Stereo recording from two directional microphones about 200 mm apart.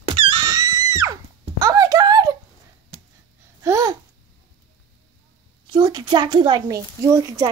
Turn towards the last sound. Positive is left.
turn(degrees=-15)  # may be behind; listen again after turning